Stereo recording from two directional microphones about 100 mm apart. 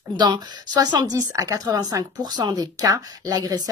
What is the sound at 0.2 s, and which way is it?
A woman's voice, 45° right (ahead or behind).